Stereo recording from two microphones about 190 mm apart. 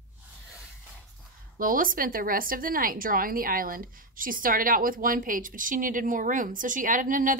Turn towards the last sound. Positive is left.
turn(degrees=-45)  # may be behind; listen again after turning